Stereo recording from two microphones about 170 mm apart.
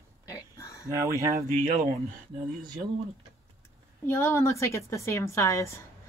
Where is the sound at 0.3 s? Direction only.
20° left (ahead or behind).